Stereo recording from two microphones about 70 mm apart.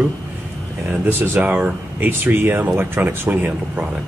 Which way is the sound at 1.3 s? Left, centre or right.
Centre.